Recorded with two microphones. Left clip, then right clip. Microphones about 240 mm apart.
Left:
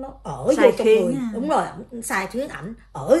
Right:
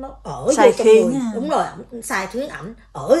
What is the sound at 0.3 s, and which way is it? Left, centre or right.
A woman's voice, centre.